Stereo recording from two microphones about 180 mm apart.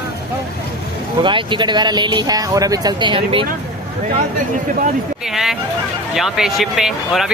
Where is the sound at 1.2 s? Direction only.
25° right (ahead or behind).